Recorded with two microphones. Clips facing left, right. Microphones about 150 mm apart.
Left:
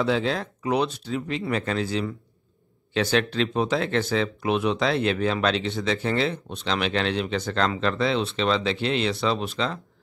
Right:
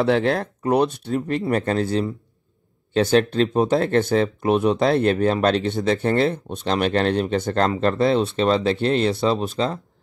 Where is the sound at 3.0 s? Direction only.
40° right (ahead or behind).